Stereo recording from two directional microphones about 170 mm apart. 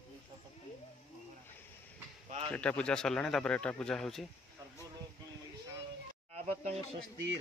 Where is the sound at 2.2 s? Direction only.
35° right (ahead or behind).